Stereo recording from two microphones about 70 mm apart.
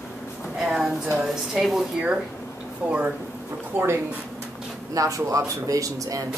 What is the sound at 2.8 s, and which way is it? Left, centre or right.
Speech, centre.